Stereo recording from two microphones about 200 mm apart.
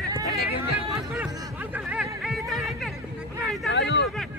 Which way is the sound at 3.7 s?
60° left (ahead or behind).